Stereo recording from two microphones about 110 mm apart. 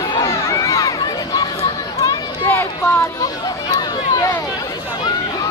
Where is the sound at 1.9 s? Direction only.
30° left (ahead or behind).